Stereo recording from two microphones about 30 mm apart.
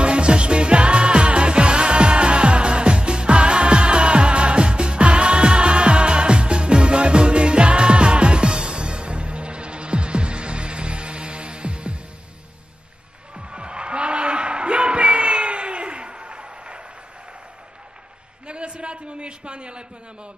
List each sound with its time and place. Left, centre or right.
0.0 s music: right
13.4 s music: right
18.5 s a sound: right